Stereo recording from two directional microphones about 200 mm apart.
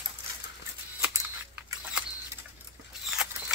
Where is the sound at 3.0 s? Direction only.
5° right (ahead or behind).